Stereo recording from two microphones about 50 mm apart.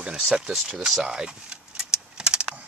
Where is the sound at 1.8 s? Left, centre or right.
Centre.